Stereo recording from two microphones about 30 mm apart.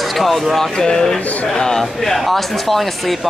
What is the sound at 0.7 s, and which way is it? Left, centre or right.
Speech, left.